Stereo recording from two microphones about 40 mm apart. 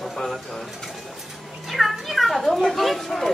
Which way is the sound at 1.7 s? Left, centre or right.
Centre.